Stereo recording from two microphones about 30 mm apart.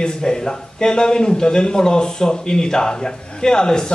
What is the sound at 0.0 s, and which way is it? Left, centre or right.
A man's voice, left.